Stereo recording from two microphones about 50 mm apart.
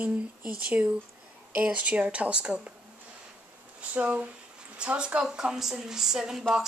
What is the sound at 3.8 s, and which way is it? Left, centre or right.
A woman's voice, right.